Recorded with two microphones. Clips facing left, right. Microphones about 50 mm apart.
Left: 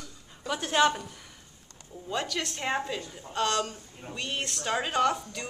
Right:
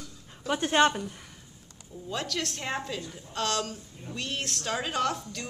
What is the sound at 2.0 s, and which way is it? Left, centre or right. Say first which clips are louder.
A woman's voice: left 1 dB; centre.